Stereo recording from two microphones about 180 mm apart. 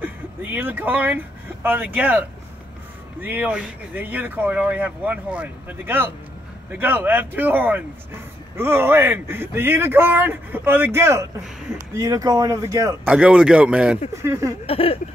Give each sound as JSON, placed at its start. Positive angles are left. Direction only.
{"t": 0.0, "sound": "speech", "side_deg": -10}
{"t": 13.0, "sound": "speech", "side_deg": -5}
{"t": 14.7, "sound": "speech", "side_deg": 30}